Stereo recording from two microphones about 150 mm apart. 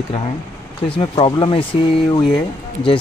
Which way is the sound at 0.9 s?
35° left (ahead or behind).